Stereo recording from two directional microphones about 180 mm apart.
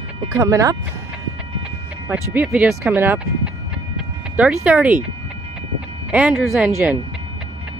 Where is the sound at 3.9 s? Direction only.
5° right (ahead or behind).